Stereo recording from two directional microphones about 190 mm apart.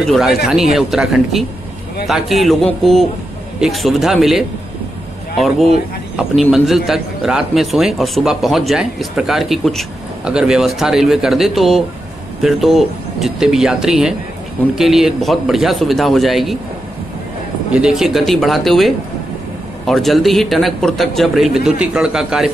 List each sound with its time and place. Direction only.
0.0 s a man's voice: centre (ahead or behind)
6.5 s a man's voice: centre (ahead or behind)
17.7 s a man's voice: 5° right (ahead or behind)